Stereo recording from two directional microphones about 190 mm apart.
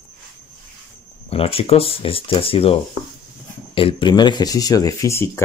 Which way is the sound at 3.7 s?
30° left (ahead or behind).